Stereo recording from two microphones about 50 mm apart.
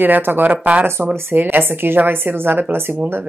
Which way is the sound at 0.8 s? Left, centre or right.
Right.